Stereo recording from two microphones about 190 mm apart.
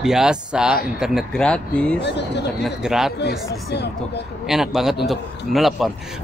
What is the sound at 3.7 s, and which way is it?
Speech, 60° left (ahead or behind).